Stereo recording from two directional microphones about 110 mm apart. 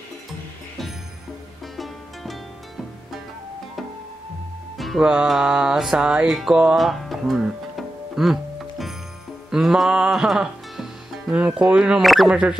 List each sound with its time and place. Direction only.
4.7 s music: centre (ahead or behind)